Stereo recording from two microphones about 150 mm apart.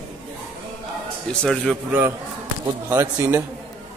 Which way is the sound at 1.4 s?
5° left (ahead or behind).